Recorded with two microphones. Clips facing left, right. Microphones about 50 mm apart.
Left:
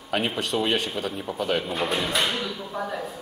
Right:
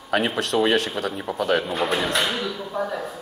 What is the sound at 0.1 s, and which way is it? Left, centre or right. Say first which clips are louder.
Speech: right 4 dB; centre.